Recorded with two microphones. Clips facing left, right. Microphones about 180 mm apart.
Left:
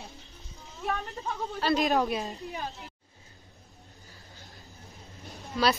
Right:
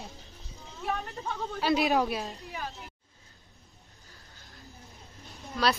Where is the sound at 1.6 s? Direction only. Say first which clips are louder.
Even; 5° right (ahead or behind).